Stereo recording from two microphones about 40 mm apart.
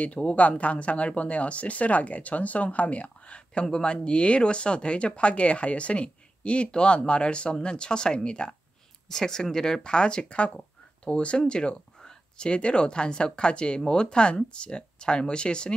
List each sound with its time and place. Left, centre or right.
0.0 s speech: left